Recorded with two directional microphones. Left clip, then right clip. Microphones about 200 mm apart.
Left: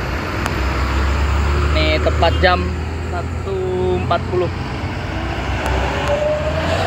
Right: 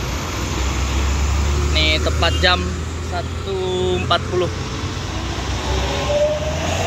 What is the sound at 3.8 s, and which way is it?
Vehicle, centre (ahead or behind).